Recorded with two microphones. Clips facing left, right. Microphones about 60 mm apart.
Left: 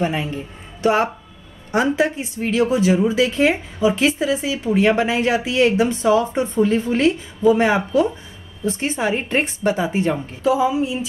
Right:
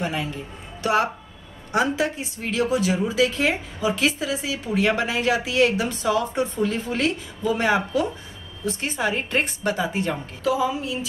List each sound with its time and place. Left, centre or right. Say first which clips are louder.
0.0 s a man's voice: left 5 dB; left